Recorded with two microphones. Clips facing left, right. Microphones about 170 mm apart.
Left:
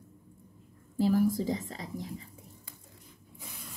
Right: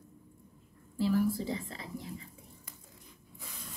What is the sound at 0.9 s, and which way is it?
A woman's voice, 40° left (ahead or behind).